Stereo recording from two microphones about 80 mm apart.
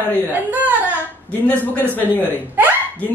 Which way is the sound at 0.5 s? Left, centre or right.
Right.